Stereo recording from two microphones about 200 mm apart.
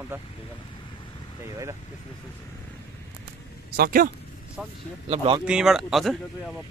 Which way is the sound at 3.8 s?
45° right (ahead or behind).